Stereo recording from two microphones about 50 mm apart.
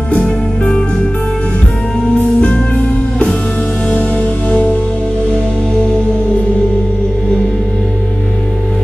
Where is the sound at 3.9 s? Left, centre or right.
Left.